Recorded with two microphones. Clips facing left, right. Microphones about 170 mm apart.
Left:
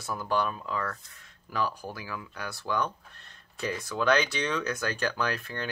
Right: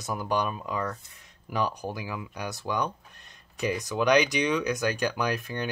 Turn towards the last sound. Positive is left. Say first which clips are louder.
# right 3 dB
turn(degrees=-15)  # may be behind; listen again after turning